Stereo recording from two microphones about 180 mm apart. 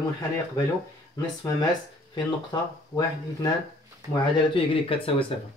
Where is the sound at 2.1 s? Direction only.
25° left (ahead or behind).